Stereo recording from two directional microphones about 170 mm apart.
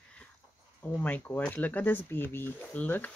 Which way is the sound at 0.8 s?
10° left (ahead or behind).